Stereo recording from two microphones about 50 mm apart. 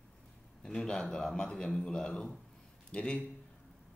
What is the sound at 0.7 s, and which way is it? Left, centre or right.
Speech, centre.